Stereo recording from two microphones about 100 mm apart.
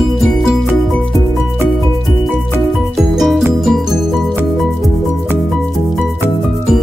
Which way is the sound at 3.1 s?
Centre (ahead or behind).